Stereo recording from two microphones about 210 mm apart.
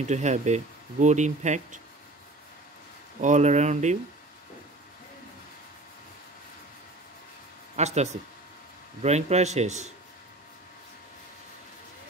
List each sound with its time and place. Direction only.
0.0 s speech: 35° right (ahead or behind)
3.2 s speech: 35° right (ahead or behind)
7.7 s speech: 30° right (ahead or behind)